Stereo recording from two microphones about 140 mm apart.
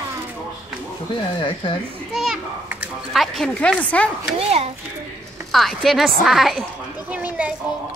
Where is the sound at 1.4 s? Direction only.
40° left (ahead or behind).